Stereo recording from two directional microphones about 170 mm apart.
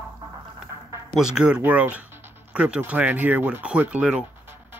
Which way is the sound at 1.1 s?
5° right (ahead or behind).